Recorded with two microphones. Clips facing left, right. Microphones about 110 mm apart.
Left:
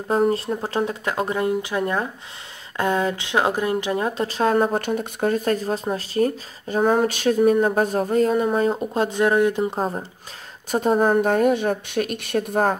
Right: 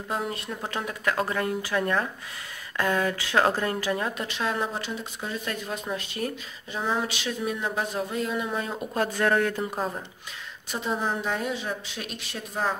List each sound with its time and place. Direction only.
0.1 s speech: 35° left (ahead or behind)
4.3 s speech: 40° left (ahead or behind); by 9.8 s 20° left (ahead or behind)
9.8 s speech: 30° left (ahead or behind)
10.7 s a woman's voice: 50° left (ahead or behind)